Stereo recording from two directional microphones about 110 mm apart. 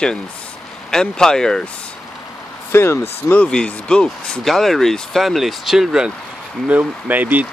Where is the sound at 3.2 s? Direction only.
10° left (ahead or behind).